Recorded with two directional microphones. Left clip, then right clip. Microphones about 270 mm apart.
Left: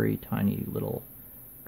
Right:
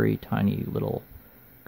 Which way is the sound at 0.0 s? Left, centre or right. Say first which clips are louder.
Right 3 dB; centre.